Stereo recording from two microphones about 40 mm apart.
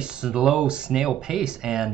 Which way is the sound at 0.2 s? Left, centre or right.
Centre.